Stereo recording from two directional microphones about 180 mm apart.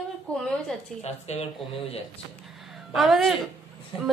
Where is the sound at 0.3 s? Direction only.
5° left (ahead or behind).